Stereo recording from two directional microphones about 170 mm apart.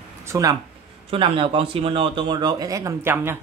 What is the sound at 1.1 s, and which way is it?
Speech, 30° right (ahead or behind).